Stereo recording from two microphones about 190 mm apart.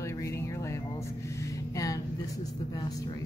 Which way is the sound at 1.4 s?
15° left (ahead or behind).